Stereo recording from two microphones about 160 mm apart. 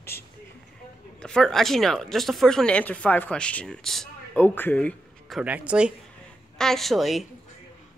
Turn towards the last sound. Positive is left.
turn(degrees=0)  # may be behind; listen again after turning